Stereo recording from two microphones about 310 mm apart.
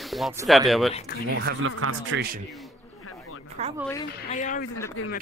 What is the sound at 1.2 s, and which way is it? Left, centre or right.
Speech, right.